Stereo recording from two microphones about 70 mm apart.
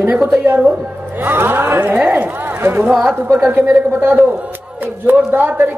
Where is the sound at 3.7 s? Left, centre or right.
Right.